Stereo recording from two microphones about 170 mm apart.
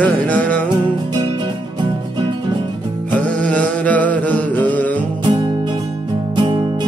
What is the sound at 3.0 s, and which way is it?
Music, 10° left (ahead or behind).